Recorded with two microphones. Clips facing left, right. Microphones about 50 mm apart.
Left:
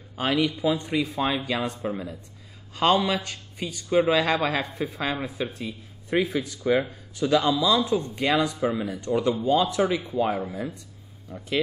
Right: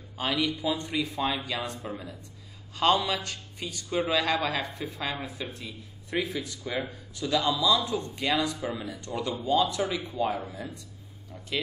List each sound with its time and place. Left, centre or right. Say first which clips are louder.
0.2 s speech: left 5 dB; left